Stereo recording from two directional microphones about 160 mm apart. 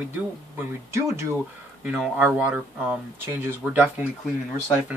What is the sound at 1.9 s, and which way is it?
Speech, 5° right (ahead or behind).